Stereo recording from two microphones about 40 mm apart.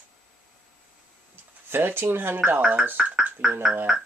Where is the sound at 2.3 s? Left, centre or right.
Right.